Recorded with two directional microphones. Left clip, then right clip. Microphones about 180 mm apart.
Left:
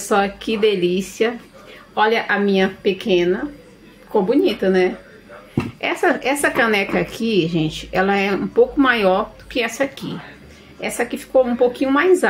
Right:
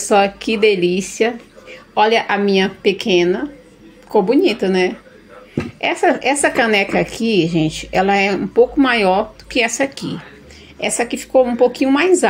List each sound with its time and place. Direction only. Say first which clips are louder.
0.1 s a woman's voice: right 4 dB; 25° right (ahead or behind)
5.5 s a woman's voice: right 3 dB; 15° right (ahead or behind)
11.0 s a woman's voice: right 2 dB; 25° right (ahead or behind)